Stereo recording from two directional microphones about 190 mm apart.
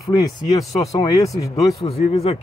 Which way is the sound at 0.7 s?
15° left (ahead or behind).